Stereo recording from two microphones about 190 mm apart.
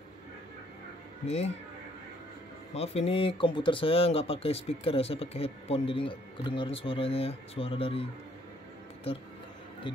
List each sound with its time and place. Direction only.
1.2 s speech: 35° left (ahead or behind)
2.7 s speech: 35° left (ahead or behind)
9.9 s speech: 25° left (ahead or behind)